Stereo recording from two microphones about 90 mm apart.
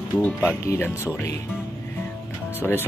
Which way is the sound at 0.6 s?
30° left (ahead or behind).